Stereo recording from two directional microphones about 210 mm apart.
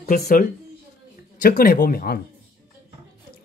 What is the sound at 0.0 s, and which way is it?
Speech, 45° left (ahead or behind).